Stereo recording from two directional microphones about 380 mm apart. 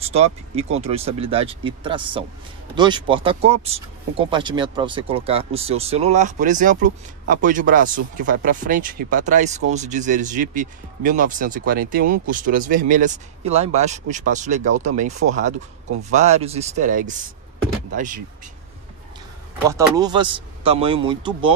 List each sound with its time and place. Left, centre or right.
0.0 s speech: centre
19.7 s speech: centre